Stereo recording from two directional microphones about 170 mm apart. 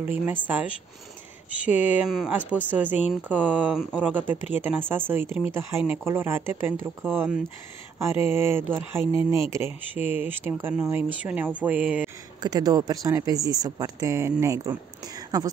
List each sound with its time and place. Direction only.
0.0 s speech: 10° right (ahead or behind)
12.4 s speech: 25° right (ahead or behind)